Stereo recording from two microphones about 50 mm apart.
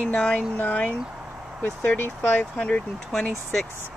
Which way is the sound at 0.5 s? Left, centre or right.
Left.